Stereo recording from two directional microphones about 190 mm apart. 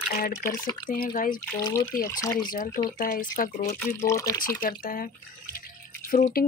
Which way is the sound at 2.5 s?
45° left (ahead or behind).